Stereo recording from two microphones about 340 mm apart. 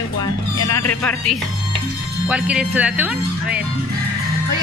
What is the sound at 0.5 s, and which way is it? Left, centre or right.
Music, left.